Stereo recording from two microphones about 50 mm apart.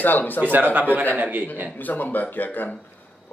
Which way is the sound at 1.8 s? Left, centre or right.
Left.